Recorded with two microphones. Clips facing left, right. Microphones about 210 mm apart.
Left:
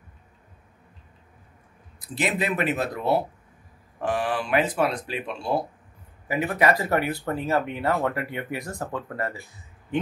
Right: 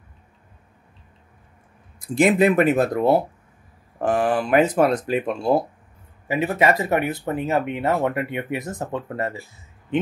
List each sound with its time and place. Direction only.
2.0 s speech: 50° right (ahead or behind)
6.2 s speech: 25° right (ahead or behind)